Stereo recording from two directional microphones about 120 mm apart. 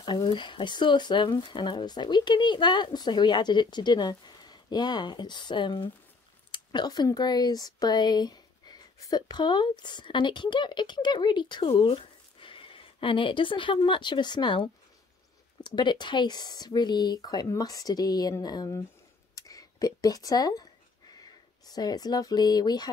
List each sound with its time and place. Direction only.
0.0 s speech: 40° left (ahead or behind)
19.3 s a sound: 30° left (ahead or behind)
21.2 s speech: 35° left (ahead or behind)